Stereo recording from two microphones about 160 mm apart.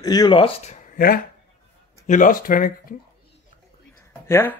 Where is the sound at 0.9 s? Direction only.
65° left (ahead or behind).